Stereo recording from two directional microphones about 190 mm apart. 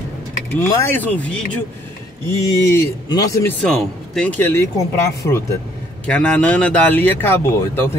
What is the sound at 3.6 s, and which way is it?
Speech, 5° left (ahead or behind).